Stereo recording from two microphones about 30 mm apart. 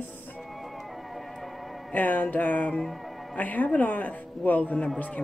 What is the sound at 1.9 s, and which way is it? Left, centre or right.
A woman's voice, left.